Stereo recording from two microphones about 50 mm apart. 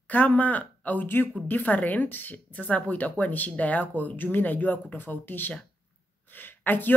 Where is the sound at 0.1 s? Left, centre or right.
Left.